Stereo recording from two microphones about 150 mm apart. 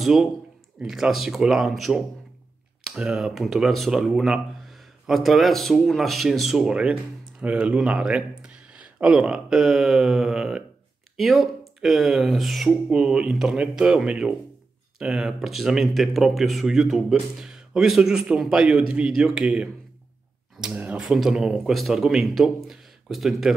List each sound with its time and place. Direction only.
0.0 s speech: centre (ahead or behind)